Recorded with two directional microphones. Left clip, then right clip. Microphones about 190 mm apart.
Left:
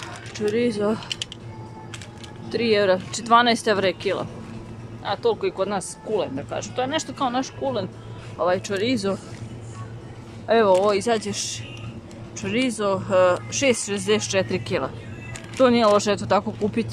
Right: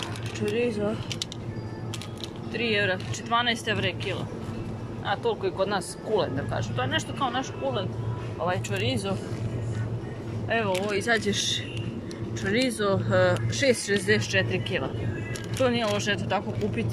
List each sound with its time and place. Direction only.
0.4 s speech: 25° left (ahead or behind)
2.5 s speech: 25° left (ahead or behind)
5.0 s speech: 25° left (ahead or behind)
10.5 s speech: 25° left (ahead or behind)
11.1 s speech: 10° left (ahead or behind)